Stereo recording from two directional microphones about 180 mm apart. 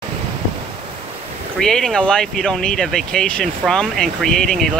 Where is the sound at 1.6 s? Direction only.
5° left (ahead or behind).